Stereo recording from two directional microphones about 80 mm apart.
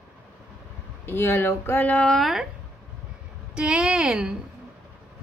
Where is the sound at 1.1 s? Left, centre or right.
Left.